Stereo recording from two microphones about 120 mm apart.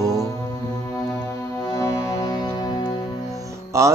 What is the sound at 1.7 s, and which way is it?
Music, 30° left (ahead or behind).